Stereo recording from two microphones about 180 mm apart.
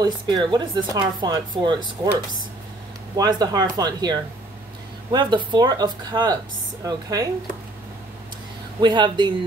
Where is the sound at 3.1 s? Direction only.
20° right (ahead or behind).